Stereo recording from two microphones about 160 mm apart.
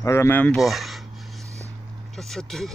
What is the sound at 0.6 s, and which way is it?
Speech, centre (ahead or behind).